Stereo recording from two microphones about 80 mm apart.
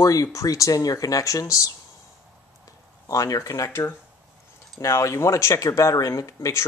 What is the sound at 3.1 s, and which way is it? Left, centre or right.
Speech, left.